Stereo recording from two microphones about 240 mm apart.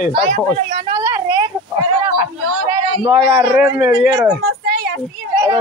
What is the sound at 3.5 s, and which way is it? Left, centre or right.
Speech, centre.